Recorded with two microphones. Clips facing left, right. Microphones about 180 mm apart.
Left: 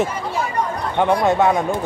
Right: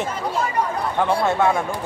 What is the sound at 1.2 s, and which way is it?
Speech, 15° left (ahead or behind).